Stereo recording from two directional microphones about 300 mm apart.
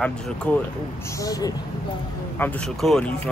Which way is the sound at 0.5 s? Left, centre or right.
Centre.